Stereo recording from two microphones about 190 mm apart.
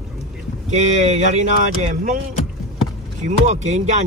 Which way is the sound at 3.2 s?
40° right (ahead or behind).